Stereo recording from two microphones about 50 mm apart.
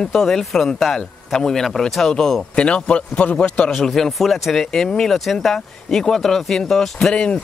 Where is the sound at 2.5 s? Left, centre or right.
Left.